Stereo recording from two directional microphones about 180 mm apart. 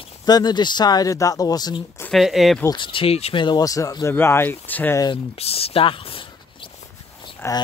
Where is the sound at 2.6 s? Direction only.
25° left (ahead or behind); by 5.0 s 10° left (ahead or behind).